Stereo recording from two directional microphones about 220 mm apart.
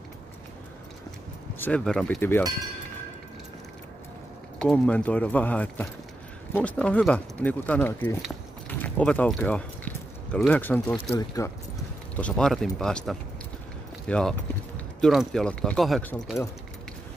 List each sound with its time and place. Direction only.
1.6 s speech: 5° left (ahead or behind)
4.6 s speech: 5° left (ahead or behind)
12.2 s speech: 5° left (ahead or behind)